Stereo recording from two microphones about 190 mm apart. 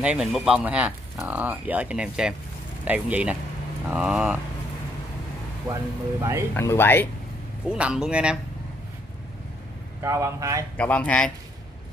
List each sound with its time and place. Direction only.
0.0 s speech: 5° right (ahead or behind)
5.7 s speech: 15° right (ahead or behind)
6.5 s speech: 15° left (ahead or behind)
7.6 s speech: 5° right (ahead or behind)
10.0 s speech: 15° right (ahead or behind)
10.8 s speech: 5° left (ahead or behind)